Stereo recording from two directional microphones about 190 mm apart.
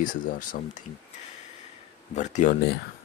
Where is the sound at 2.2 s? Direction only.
40° left (ahead or behind).